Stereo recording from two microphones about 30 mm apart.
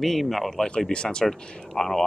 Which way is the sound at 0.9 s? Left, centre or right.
Left.